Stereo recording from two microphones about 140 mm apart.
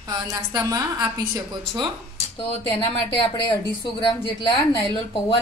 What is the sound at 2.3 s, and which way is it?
Speech, 35° left (ahead or behind).